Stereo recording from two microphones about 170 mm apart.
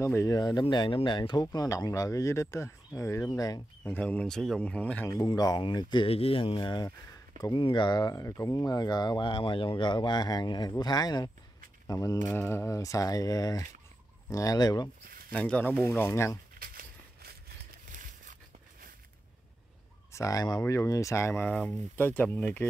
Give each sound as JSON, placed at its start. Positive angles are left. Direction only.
{"t": 0.0, "sound": "speech", "side_deg": 15}
{"t": 3.9, "sound": "speech", "side_deg": 10}
{"t": 5.1, "sound": "speech", "side_deg": 25}
{"t": 15.0, "sound": "a sound", "side_deg": -60}
{"t": 15.3, "sound": "speech", "side_deg": 5}
{"t": 16.5, "sound": "a sound", "side_deg": -60}
{"t": 20.1, "sound": "speech", "side_deg": 20}